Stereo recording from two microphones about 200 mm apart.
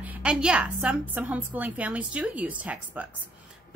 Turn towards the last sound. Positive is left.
turn(degrees=-10)  # may be behind; listen again after turning